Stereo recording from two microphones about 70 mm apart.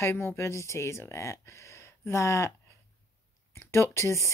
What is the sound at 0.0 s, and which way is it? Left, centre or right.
Speech, left.